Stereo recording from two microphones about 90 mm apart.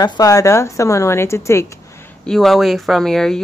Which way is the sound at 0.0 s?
40° left (ahead or behind).